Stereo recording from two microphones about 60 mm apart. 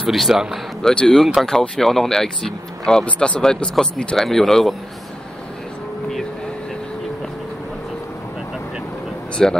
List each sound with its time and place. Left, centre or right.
0.0 s a man's voice: centre
0.8 s speech: centre
9.4 s speech: centre